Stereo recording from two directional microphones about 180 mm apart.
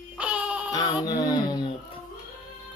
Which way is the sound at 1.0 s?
20° left (ahead or behind).